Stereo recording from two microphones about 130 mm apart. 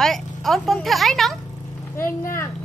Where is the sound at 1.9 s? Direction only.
20° left (ahead or behind).